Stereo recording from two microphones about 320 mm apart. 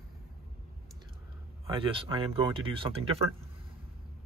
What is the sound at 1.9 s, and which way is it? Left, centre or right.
Speech, centre.